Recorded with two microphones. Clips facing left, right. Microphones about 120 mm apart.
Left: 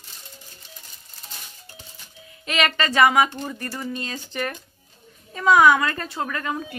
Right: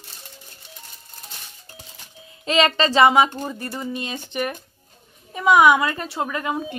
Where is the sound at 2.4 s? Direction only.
30° right (ahead or behind).